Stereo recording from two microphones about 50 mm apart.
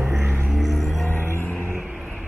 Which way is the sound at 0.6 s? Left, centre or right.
Centre.